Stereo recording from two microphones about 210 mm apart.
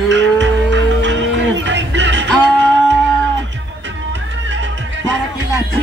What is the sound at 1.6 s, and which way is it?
Music, 60° right (ahead or behind).